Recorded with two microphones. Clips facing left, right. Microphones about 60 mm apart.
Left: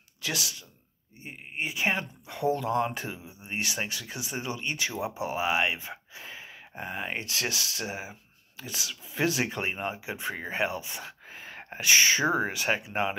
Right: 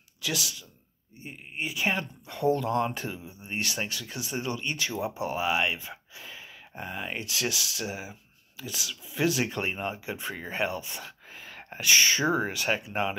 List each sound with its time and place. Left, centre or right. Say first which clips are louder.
0.2 s speech: right 1 dB; left
9.5 s speech: even; centre